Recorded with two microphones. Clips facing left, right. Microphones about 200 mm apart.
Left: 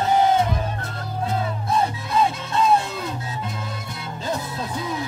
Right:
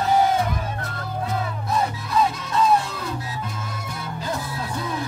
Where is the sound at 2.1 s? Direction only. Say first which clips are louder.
Right 1 dB; 25° left (ahead or behind).